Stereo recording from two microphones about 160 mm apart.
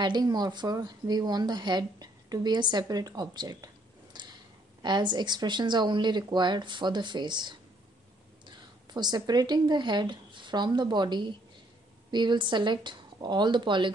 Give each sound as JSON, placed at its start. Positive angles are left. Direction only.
{"t": 0.0, "sound": "speech", "side_deg": -25}
{"t": 8.9, "sound": "speech", "side_deg": -25}